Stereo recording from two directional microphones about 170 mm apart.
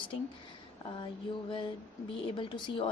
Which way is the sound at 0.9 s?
30° left (ahead or behind).